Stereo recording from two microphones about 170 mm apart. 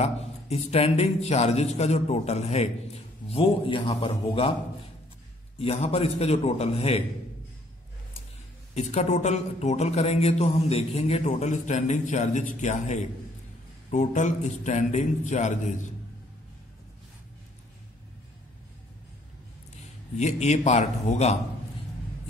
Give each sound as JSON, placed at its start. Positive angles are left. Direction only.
{"t": 0.0, "sound": "speech", "side_deg": 40}
{"t": 5.6, "sound": "speech", "side_deg": 35}
{"t": 8.7, "sound": "speech", "side_deg": 40}
{"t": 20.2, "sound": "speech", "side_deg": 45}